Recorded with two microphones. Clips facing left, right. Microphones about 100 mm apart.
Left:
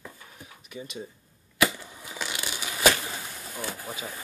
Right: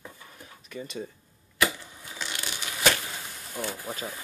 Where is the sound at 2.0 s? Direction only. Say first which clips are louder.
Left 2 dB; 10° left (ahead or behind).